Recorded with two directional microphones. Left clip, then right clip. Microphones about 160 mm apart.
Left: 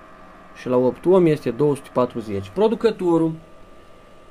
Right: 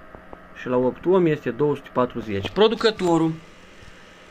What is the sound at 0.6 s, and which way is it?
Speech, 15° left (ahead or behind).